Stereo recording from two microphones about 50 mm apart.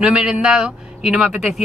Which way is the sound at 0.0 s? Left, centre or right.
Centre.